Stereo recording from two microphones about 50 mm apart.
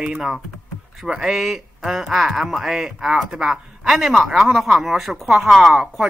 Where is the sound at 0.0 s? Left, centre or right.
Centre.